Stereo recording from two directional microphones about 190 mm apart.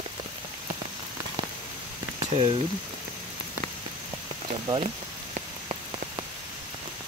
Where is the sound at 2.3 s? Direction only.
30° right (ahead or behind).